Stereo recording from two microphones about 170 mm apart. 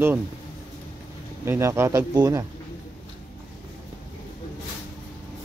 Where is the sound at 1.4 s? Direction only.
15° right (ahead or behind).